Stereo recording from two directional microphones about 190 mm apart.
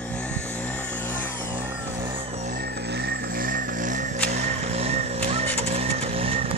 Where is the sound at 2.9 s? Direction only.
55° right (ahead or behind).